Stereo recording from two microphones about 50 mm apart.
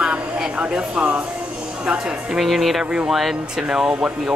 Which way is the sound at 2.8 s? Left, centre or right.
Right.